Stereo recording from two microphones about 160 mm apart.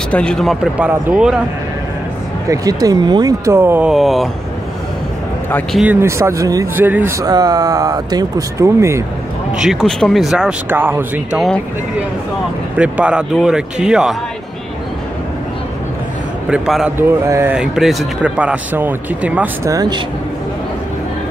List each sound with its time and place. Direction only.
0.1 s speech: 5° left (ahead or behind)
0.7 s speech: 5° right (ahead or behind)
2.5 s speech: 20° right (ahead or behind)
3.9 s speech: centre (ahead or behind)
5.9 s speech: 15° right (ahead or behind)
9.5 s speech: 5° right (ahead or behind)
11.3 s speech: centre (ahead or behind)
12.7 s speech: 5° right (ahead or behind)
16.4 s speech: 5° right (ahead or behind)
17.3 s speech: 15° right (ahead or behind)
17.6 s speech: centre (ahead or behind); by 20.0 s 20° right (ahead or behind)